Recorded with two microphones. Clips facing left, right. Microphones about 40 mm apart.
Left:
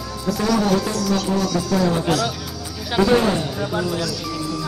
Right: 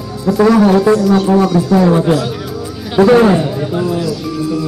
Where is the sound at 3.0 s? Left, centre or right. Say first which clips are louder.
Right 9 dB; right.